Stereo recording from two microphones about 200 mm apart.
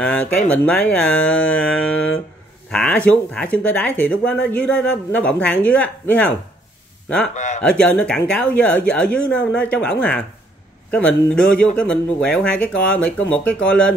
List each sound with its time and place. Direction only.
0.0 s speech: 5° left (ahead or behind)
2.7 s speech: 5° left (ahead or behind)
7.3 s speech: 35° left (ahead or behind)
7.6 s speech: 5° left (ahead or behind)